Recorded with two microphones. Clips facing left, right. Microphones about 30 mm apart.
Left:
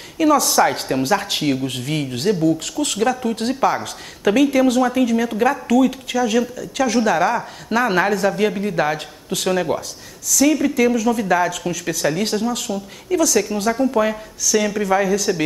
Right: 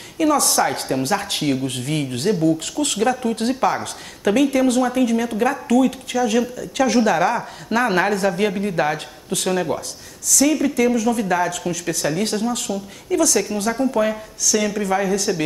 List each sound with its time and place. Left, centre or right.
0.2 s speech: centre
8.9 s speech: centre